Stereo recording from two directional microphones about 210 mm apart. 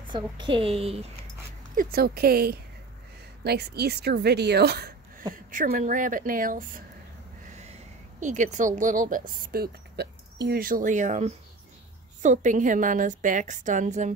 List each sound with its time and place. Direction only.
0.1 s a woman's voice: 20° right (ahead or behind)
1.8 s a woman's voice: 45° right (ahead or behind)
8.2 s a woman's voice: 35° right (ahead or behind)